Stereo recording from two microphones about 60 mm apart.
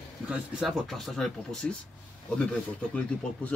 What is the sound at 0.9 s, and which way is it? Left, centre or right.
Speech, centre.